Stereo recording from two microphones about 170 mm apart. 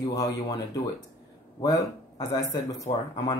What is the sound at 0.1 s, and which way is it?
Speech, 20° left (ahead or behind).